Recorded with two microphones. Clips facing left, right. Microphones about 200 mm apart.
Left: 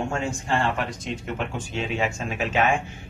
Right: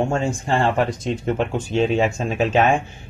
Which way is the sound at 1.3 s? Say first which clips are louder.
Right 9 dB; 30° right (ahead or behind).